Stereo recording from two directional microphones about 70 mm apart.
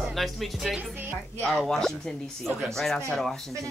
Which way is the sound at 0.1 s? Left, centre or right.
Centre.